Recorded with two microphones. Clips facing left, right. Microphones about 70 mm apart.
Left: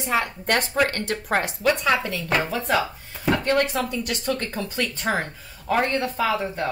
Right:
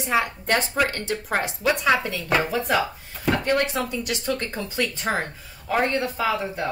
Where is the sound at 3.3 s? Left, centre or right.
Right.